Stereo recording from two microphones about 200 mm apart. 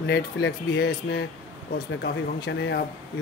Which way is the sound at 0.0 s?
60° left (ahead or behind).